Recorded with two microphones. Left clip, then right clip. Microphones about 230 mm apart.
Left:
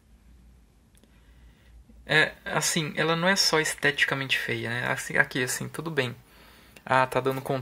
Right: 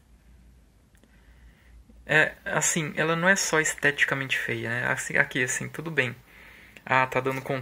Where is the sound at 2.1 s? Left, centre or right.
Centre.